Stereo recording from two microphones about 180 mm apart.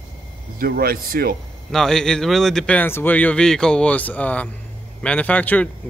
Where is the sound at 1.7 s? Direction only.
5° left (ahead or behind).